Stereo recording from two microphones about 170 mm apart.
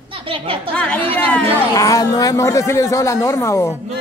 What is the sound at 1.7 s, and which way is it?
Speech, 20° left (ahead or behind).